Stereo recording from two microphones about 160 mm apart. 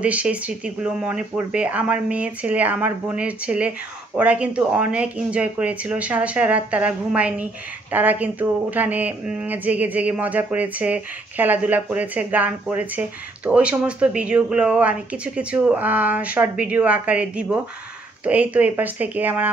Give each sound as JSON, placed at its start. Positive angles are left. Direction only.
{"t": 0.0, "sound": "speech", "side_deg": -10}